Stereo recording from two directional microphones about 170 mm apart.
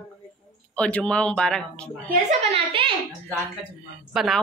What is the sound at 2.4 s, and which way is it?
Speech, 35° right (ahead or behind).